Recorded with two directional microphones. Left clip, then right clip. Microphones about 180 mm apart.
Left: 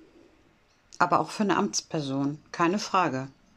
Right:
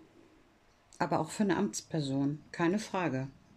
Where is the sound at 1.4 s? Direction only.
20° right (ahead or behind).